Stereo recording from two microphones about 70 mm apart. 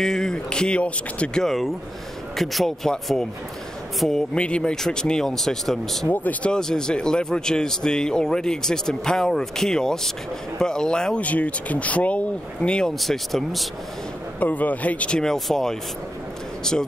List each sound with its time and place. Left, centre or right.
0.0 s speech: centre
4.4 s speech: centre
6.0 s speech: left
6.5 s speech: centre
14.4 s speech: left